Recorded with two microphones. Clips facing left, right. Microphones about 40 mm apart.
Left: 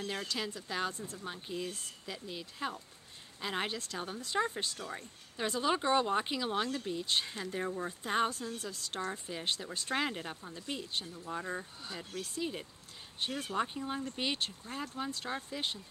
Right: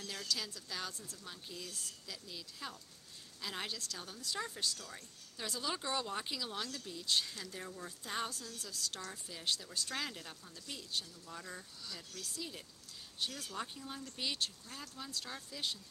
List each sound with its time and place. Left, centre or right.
0.0 s speech: left